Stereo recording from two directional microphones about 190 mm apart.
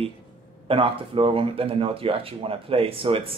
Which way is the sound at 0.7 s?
30° right (ahead or behind).